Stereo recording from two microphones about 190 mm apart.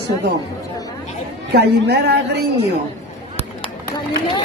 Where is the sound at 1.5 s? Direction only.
60° right (ahead or behind).